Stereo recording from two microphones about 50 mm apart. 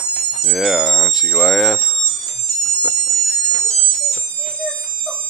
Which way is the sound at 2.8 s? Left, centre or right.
Centre.